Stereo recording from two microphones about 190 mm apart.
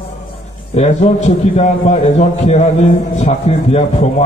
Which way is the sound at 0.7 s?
35° left (ahead or behind).